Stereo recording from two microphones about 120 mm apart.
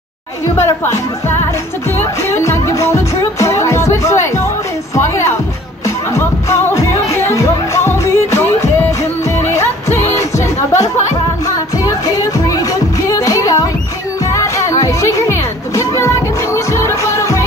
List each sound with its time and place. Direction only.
0.6 s music: 25° left (ahead or behind)
4.9 s speech: 20° left (ahead or behind)
5.9 s music: 25° left (ahead or behind)
10.7 s music: 75° left (ahead or behind)
11.4 s music: 30° left (ahead or behind)